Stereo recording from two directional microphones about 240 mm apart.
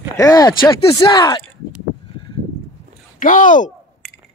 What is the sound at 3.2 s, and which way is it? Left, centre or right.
Speech, left.